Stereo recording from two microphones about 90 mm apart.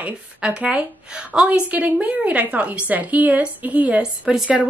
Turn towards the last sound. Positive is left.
turn(degrees=-10)  # may be behind; listen again after turning